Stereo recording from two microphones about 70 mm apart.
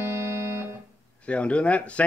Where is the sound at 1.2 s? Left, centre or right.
Centre.